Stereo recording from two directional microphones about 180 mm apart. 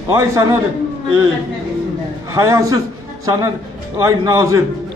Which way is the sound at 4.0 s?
15° right (ahead or behind).